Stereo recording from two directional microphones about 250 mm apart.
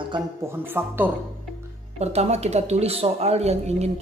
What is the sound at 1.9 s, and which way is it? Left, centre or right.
Speech, right.